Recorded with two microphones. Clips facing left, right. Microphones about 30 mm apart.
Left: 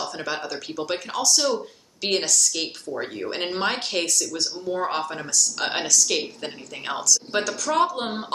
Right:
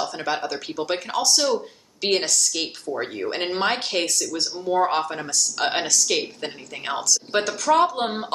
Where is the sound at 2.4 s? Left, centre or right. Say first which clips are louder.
Even; centre.